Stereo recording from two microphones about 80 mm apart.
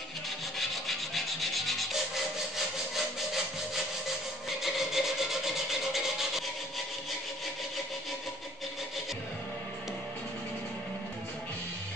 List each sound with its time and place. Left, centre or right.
0.6 s rub: centre
4.7 s rub: centre